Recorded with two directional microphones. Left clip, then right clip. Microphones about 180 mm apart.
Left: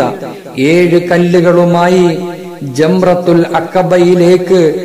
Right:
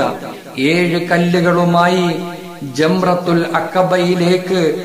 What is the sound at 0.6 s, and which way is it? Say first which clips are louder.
A man's voice: left 7 dB; 45° left (ahead or behind).